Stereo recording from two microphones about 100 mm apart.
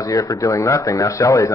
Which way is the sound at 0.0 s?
35° left (ahead or behind).